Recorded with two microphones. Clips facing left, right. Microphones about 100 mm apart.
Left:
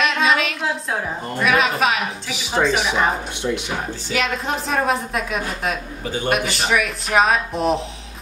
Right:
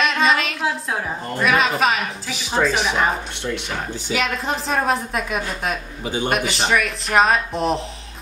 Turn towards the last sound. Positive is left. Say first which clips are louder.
# left 1 dB
turn(degrees=0)  # may be behind; listen again after turning